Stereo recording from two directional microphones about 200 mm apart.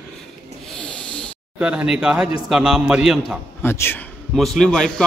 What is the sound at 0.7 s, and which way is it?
Snort, 5° left (ahead or behind).